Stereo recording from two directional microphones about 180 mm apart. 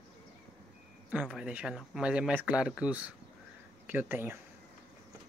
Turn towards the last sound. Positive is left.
turn(degrees=-10)  # may be behind; listen again after turning